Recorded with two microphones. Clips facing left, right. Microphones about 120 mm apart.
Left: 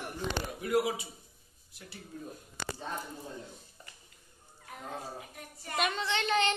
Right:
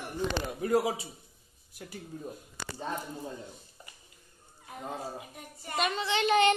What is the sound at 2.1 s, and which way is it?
Speech, 40° right (ahead or behind).